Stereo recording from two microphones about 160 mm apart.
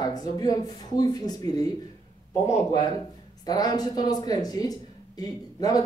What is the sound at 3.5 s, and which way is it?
Speech, 25° left (ahead or behind).